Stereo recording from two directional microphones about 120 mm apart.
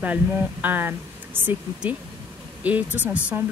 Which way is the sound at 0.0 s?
15° right (ahead or behind).